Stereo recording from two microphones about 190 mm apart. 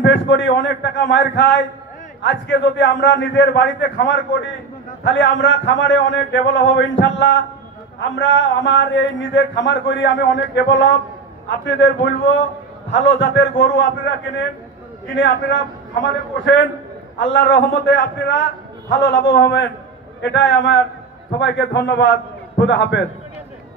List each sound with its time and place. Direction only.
0.0 s mantra: 70° left (ahead or behind)
15.1 s mantra: 75° left (ahead or behind)